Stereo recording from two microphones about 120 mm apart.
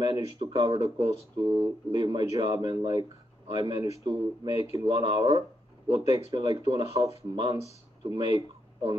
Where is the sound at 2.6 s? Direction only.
40° right (ahead or behind).